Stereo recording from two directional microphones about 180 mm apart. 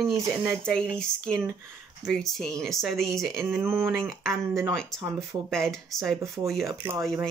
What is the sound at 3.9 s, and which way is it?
Speech, centre (ahead or behind).